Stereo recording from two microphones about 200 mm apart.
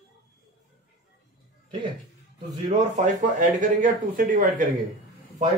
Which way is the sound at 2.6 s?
35° right (ahead or behind).